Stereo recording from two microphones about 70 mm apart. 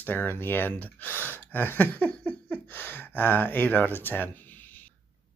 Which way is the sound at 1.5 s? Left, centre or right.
Left.